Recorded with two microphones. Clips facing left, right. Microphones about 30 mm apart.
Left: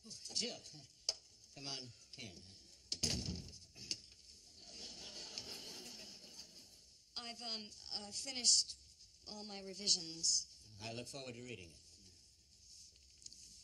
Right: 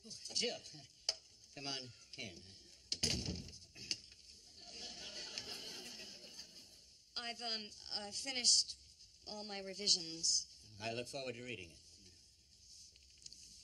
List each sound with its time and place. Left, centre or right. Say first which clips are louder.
0.0 s stir: right 3 dB; right
4.6 s a sound: right 2 dB; right
7.2 s a woman's voice: right 3 dB; right